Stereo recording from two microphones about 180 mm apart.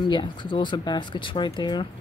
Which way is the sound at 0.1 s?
25° left (ahead or behind).